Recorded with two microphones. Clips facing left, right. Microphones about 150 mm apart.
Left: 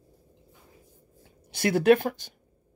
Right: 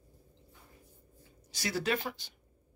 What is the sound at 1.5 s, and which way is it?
Speech, 60° left (ahead or behind).